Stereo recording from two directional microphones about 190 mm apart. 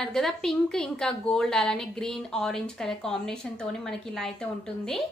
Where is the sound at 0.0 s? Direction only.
5° left (ahead or behind).